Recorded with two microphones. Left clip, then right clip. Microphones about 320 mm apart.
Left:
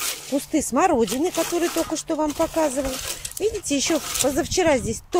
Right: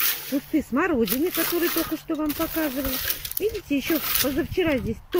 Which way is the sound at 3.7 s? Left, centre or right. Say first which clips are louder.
Left 2 dB; centre.